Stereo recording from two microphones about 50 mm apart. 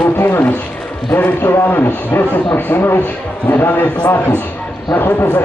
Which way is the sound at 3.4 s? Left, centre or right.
Left.